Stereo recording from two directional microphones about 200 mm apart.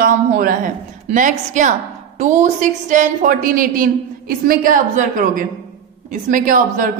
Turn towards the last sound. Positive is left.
turn(degrees=-40)  # may be behind; listen again after turning